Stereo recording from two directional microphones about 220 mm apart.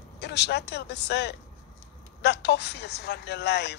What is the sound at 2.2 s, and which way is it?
Speech, 50° left (ahead or behind).